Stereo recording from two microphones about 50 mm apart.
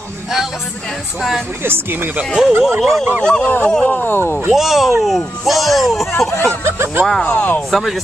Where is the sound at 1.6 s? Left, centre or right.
Right.